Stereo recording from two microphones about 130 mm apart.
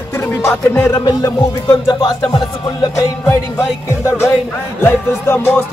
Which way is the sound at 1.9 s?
35° left (ahead or behind).